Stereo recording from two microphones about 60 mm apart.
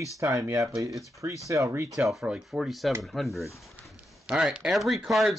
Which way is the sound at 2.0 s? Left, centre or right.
Right.